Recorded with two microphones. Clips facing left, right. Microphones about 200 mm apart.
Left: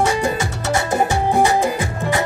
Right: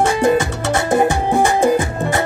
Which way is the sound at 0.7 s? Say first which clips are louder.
Right 2 dB; 55° right (ahead or behind).